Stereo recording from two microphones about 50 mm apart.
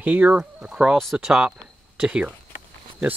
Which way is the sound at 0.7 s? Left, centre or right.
Centre.